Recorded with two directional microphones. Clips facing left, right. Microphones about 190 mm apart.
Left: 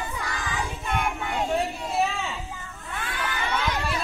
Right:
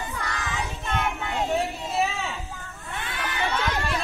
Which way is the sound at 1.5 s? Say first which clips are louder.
Even; centre (ahead or behind).